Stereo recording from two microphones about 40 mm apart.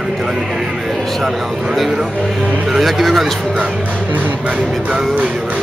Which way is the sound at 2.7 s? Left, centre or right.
Centre.